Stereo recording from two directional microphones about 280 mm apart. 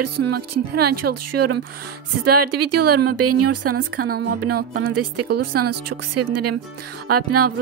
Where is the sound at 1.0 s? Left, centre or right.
Right.